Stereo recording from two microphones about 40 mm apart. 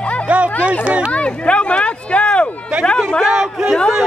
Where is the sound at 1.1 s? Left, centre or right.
Left.